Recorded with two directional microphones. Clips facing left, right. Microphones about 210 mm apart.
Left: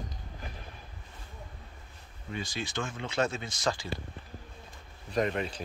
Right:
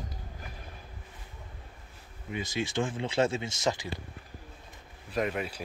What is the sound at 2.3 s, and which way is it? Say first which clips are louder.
Speech: right 4 dB; 20° right (ahead or behind).